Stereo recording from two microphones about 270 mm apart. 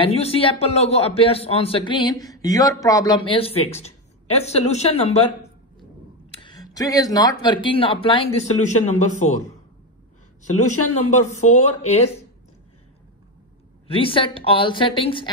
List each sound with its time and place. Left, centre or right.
0.0 s a man's voice: left
6.3 s a man's voice: centre
10.6 s a man's voice: left
13.8 s a man's voice: centre